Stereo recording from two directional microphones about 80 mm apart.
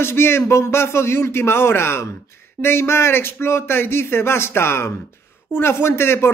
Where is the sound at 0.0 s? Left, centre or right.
Left.